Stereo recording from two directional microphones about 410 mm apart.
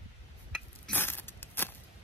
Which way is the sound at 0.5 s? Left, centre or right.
Centre.